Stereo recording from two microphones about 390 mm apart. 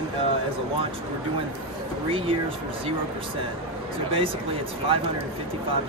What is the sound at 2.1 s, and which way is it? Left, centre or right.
Speech, centre.